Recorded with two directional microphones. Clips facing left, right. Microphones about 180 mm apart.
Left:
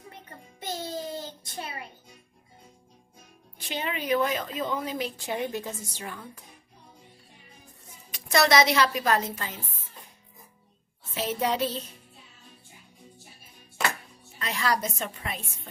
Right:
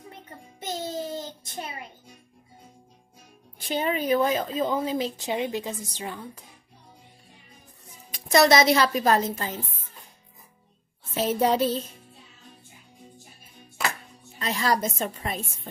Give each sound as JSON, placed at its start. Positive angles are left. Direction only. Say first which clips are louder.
{"t": 0.6, "sound": "child singing", "louder": "right 2 dB", "side_deg": -20}
{"t": 3.6, "sound": "speech", "louder": "right 5 dB", "side_deg": -40}
{"t": 8.1, "sound": "music", "louder": "right 4 dB", "side_deg": -30}
{"t": 8.6, "sound": "a woman's voice", "louder": "right 3 dB", "side_deg": -40}
{"t": 11.1, "sound": "a woman's voice", "louder": "right 5 dB", "side_deg": -40}
{"t": 14.4, "sound": "a woman's voice", "louder": "right 3 dB", "side_deg": -35}